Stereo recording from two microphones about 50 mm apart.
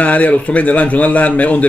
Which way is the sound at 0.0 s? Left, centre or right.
Left.